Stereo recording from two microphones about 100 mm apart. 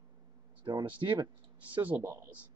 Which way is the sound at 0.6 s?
55° right (ahead or behind).